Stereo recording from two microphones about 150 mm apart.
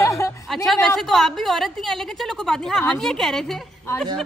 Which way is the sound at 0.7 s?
Centre (ahead or behind).